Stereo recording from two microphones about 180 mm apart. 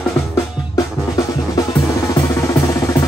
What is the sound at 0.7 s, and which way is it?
Drum, 20° left (ahead or behind).